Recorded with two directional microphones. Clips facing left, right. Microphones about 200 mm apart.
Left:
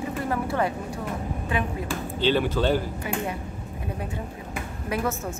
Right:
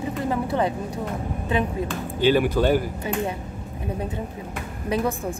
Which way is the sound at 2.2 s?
10° right (ahead or behind).